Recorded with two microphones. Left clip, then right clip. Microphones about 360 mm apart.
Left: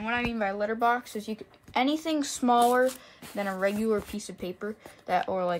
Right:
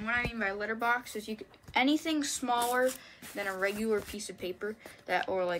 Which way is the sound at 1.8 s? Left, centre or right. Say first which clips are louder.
Left 2 dB; centre.